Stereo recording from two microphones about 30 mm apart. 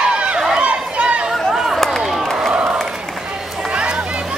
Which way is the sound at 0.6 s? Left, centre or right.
Right.